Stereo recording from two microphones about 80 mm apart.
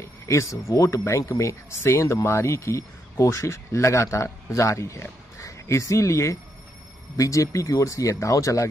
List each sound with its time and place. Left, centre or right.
0.0 s speech: left